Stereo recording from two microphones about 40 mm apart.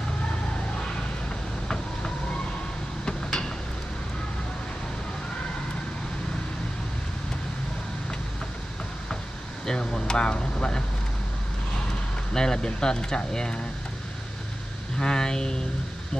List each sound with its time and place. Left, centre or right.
3.3 s a sound: centre
9.7 s speech: centre
12.4 s speech: centre
15.0 s speech: centre